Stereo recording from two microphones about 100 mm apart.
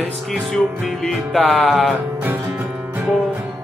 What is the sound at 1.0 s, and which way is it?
Speech, centre (ahead or behind).